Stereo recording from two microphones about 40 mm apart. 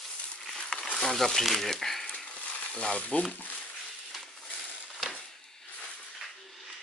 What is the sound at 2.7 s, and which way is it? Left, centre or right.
Frying, left.